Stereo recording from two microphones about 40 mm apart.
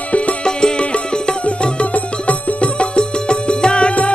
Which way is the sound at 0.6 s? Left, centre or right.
Left.